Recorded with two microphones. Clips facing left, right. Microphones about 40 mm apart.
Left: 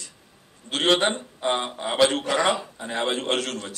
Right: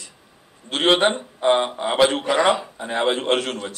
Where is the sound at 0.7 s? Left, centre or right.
Centre.